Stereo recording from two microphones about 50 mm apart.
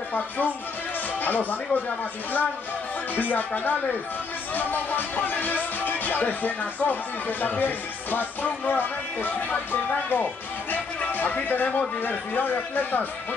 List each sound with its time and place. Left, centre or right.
0.1 s speech: left